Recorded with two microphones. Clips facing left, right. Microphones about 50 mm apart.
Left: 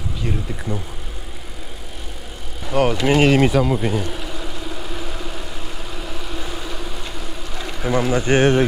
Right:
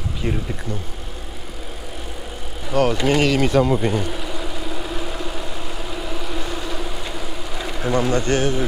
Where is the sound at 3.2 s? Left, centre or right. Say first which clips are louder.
Left 4 dB; left.